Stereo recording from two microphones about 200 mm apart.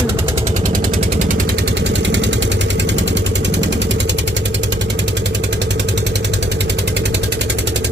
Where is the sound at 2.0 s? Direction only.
65° right (ahead or behind).